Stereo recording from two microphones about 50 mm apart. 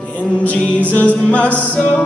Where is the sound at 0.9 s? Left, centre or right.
Left.